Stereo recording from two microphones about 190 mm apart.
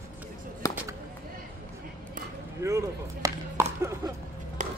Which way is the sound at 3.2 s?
15° right (ahead or behind).